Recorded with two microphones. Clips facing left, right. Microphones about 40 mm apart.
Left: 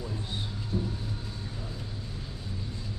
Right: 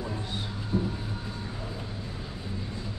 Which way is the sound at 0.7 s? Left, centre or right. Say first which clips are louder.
Right 4 dB; right.